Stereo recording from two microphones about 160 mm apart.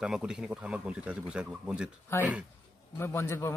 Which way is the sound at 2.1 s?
15° left (ahead or behind).